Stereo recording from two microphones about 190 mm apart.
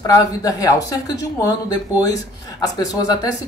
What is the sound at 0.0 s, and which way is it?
Speech, 20° left (ahead or behind).